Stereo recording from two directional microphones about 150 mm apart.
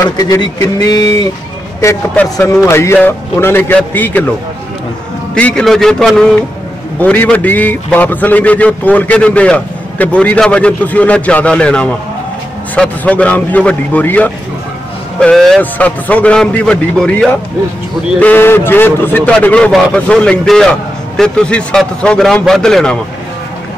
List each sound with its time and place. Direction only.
0.0 s a man's voice: 25° left (ahead or behind)
5.3 s a man's voice: 5° left (ahead or behind)